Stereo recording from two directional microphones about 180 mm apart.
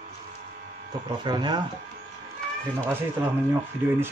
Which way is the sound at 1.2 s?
25° right (ahead or behind).